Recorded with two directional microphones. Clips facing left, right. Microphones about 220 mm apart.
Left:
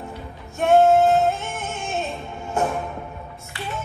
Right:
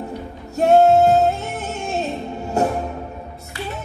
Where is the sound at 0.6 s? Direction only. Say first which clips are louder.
Right 2 dB; 40° right (ahead or behind).